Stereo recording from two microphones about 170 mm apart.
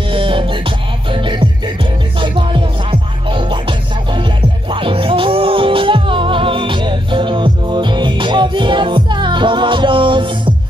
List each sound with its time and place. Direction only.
0.1 s music: 30° right (ahead or behind)